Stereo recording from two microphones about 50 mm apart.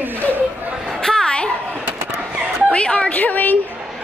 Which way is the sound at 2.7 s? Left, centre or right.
Left.